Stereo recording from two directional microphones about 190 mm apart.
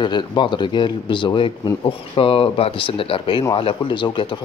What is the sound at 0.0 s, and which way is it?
Speech, 25° left (ahead or behind).